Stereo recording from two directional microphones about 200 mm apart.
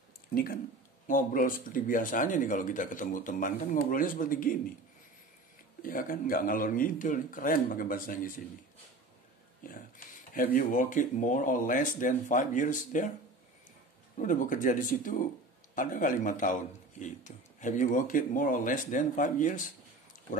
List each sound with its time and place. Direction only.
0.3 s speech: 45° left (ahead or behind)
5.8 s speech: 45° left (ahead or behind)
9.6 s speech: 45° left (ahead or behind)
14.1 s speech: 40° left (ahead or behind)